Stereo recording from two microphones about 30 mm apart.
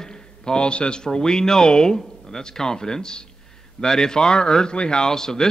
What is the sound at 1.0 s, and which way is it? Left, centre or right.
A man's voice, left.